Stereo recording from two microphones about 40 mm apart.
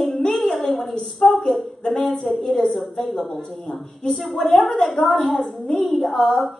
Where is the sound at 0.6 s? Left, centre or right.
Left.